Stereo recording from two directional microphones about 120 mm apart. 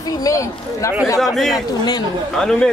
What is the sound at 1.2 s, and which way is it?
Speech, centre (ahead or behind).